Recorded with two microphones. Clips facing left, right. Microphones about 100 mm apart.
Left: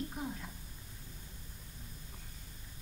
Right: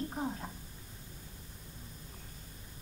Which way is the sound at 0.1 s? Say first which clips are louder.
Right 4 dB; 35° right (ahead or behind).